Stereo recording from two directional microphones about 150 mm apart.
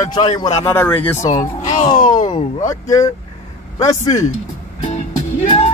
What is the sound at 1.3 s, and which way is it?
Speech, 55° left (ahead or behind).